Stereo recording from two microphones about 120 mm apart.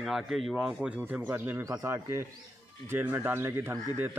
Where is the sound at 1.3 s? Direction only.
20° right (ahead or behind).